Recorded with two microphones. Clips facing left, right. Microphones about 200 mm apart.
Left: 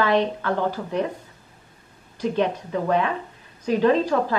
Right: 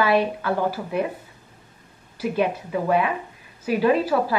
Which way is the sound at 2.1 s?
10° right (ahead or behind).